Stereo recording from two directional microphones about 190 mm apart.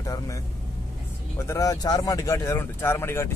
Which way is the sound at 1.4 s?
15° left (ahead or behind).